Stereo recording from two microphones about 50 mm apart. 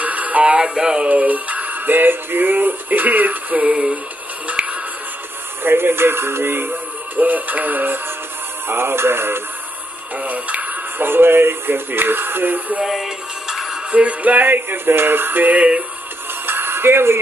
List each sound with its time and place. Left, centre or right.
0.0 s music: right
1.0 s music: right
3.7 s a sound: centre
5.6 s speech: right
10.1 s a sound: right
11.0 s speech: right
12.8 s music: centre
13.9 s music: right
16.4 s a sound: right